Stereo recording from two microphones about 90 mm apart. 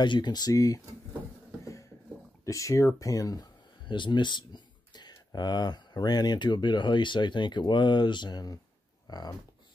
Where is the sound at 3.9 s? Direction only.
60° left (ahead or behind).